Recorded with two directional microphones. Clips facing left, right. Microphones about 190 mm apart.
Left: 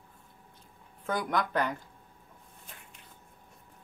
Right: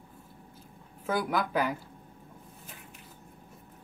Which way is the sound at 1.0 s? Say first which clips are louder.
Right 1 dB; 5° right (ahead or behind).